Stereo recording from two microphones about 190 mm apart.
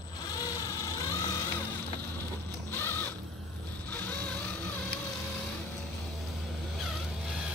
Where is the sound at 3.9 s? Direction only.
10° left (ahead or behind).